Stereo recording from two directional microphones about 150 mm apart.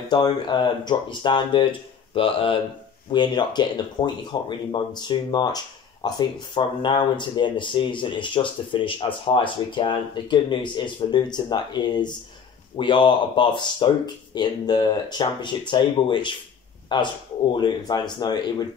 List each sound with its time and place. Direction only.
0.1 s speech: 30° left (ahead or behind)